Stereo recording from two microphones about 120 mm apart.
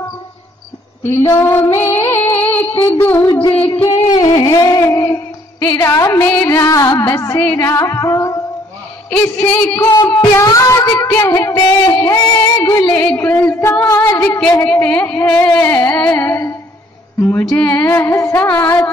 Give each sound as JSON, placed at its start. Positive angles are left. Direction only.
{"t": 1.0, "sound": "female singing", "side_deg": 20}
{"t": 2.8, "sound": "music", "side_deg": 15}
{"t": 3.6, "sound": "music", "side_deg": 55}
{"t": 4.0, "sound": "a sound", "side_deg": 35}
{"t": 4.8, "sound": "child singing", "side_deg": 20}
{"t": 6.4, "sound": "speech", "side_deg": 25}
{"t": 9.8, "sound": "a sound", "side_deg": 35}
{"t": 10.3, "sound": "speech", "side_deg": 25}
{"t": 13.0, "sound": "speech", "side_deg": 15}
{"t": 14.4, "sound": "speech", "side_deg": 15}